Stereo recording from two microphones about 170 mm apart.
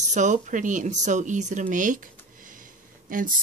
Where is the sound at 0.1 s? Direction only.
45° right (ahead or behind).